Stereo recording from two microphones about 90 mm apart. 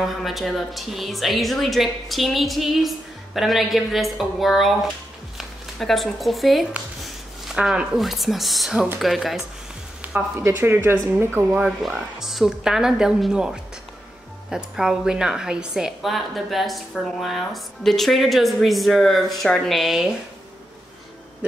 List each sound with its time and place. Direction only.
0.0 s a woman's voice: centre (ahead or behind)
10.3 s speech: 25° right (ahead or behind)
11.5 s a woman's voice: 10° right (ahead or behind)